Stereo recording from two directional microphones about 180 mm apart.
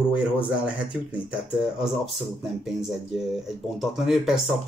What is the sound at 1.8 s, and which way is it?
Speech, 5° right (ahead or behind).